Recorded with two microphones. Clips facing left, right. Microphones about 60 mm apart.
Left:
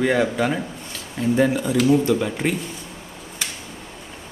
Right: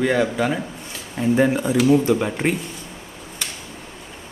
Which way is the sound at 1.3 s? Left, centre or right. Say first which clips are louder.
Right 1 dB; right.